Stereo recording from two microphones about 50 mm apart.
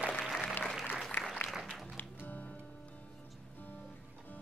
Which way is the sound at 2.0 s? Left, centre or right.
Left.